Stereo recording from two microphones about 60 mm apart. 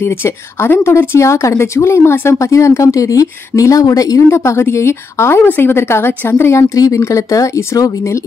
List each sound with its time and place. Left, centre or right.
0.0 s speech: left
4.3 s speech: left
6.7 s speech: left